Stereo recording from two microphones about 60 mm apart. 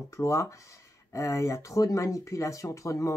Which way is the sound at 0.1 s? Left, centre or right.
Left.